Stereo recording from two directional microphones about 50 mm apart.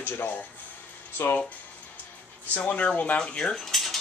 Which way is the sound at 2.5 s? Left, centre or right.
Left.